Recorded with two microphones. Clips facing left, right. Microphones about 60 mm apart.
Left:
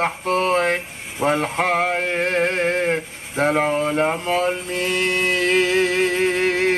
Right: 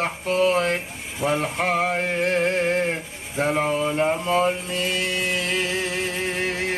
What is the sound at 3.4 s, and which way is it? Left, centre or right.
Mantra, left.